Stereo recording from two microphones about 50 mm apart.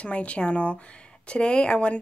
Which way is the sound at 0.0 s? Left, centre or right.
Left.